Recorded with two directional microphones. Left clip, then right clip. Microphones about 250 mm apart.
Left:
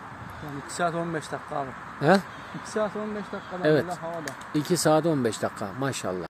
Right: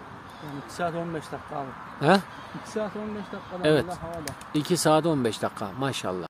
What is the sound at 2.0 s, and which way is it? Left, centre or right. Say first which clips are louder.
Speech: even; centre.